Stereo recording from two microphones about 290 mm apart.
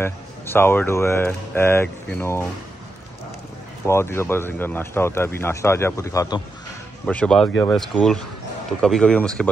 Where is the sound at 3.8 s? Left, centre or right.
Centre.